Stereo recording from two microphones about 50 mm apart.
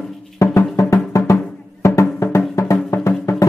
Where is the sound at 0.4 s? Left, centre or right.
Left.